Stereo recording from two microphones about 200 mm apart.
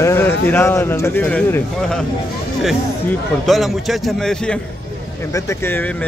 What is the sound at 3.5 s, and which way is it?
Speech, centre (ahead or behind).